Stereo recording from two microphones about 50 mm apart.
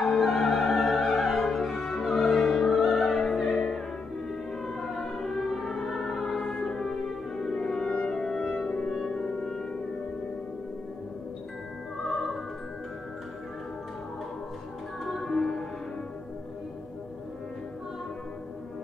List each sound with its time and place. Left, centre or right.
0.0 s opera: centre
3.5 s music: centre
8.9 s music: centre
12.0 s opera: centre
15.2 s music: centre